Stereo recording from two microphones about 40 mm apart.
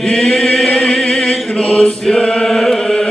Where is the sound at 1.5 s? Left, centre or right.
Left.